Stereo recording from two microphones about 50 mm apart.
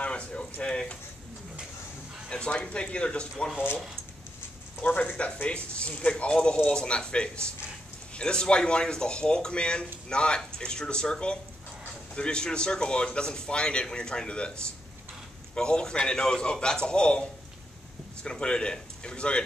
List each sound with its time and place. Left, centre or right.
0.0 s a sound: left
0.6 s speech: left
2.2 s speech: centre
4.8 s speech: left